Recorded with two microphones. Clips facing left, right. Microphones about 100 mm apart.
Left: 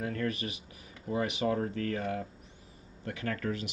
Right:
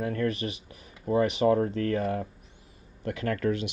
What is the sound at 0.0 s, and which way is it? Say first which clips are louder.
A man's voice: right 5 dB; 35° right (ahead or behind).